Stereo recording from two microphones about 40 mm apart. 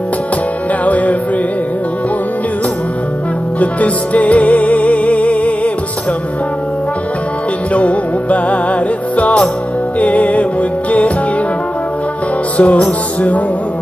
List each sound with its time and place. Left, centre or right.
0.8 s music: left
3.5 s music: left
7.7 s music: left
12.5 s music: left